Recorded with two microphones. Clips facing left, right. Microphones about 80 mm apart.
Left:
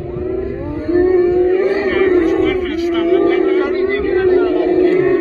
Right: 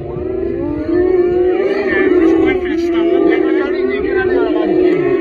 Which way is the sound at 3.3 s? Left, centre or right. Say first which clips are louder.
Right 1 dB; right.